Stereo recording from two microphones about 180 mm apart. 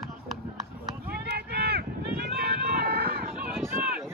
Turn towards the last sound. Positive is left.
turn(degrees=-10)  # may be behind; listen again after turning